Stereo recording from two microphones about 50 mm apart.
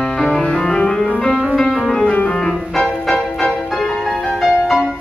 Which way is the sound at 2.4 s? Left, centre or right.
Centre.